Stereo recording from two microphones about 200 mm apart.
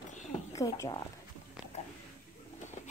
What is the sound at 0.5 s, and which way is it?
Speech, 15° left (ahead or behind).